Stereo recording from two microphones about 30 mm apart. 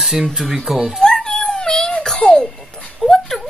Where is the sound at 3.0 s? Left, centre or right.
Centre.